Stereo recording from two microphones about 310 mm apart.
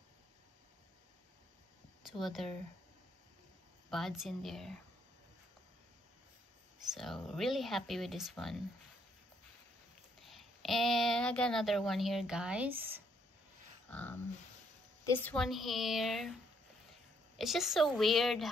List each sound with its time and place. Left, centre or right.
2.0 s speech: centre
3.9 s speech: centre
6.9 s speech: centre
10.2 s speech: centre
13.8 s a sound: centre
15.0 s speech: centre
17.4 s speech: centre